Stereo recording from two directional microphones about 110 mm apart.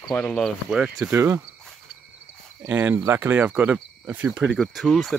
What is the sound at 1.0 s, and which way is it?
Speech, 20° right (ahead or behind).